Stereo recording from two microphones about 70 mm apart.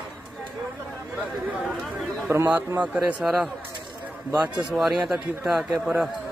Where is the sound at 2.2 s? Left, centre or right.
Right.